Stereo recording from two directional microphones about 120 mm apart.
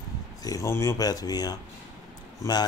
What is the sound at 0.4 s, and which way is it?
A man's voice, 30° left (ahead or behind).